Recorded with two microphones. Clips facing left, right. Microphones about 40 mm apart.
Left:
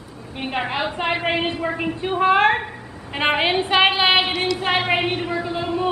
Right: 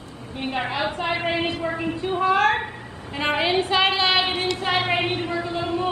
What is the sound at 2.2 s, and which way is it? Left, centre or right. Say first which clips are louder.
A woman's voice: left 3 dB; left.